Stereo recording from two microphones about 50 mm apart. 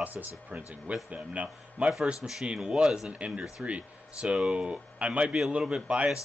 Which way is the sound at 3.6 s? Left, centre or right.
Right.